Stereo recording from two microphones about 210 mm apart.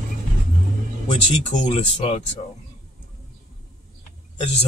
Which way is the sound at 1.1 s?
30° left (ahead or behind).